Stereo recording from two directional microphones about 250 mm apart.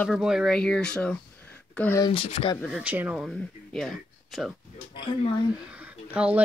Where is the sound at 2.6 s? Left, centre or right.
Centre.